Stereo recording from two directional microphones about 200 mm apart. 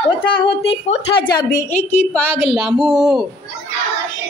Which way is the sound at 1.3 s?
20° left (ahead or behind).